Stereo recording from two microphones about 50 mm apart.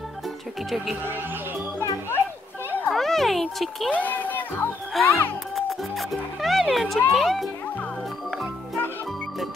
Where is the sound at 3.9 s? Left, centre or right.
Left.